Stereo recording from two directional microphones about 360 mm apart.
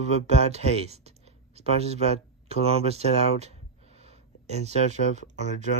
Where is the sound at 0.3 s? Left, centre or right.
Centre.